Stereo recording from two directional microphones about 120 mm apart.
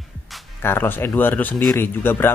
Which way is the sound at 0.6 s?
15° left (ahead or behind).